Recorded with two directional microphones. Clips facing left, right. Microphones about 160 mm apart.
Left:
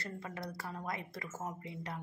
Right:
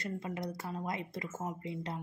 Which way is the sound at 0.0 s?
20° right (ahead or behind).